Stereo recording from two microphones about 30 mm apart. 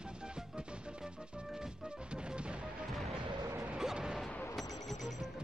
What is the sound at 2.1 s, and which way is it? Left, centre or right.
Music, right.